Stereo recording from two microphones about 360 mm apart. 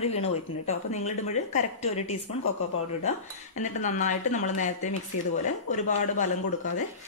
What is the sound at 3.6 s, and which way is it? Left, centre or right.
Speech, centre.